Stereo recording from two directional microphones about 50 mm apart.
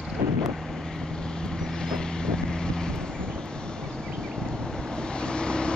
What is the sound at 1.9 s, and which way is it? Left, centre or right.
Boat, centre.